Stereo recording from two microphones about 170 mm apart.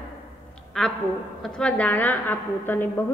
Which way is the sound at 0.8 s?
Centre (ahead or behind).